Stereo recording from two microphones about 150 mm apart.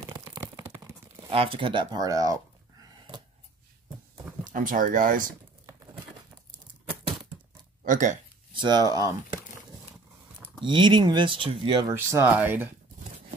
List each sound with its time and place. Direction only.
0.1 s a sound: 20° right (ahead or behind)
1.3 s speech: 40° right (ahead or behind)
4.5 s speech: 65° right (ahead or behind)
7.8 s speech: 60° right (ahead or behind)
8.5 s speech: 30° right (ahead or behind)
10.6 s speech: 30° right (ahead or behind)
11.9 s speech: 15° right (ahead or behind)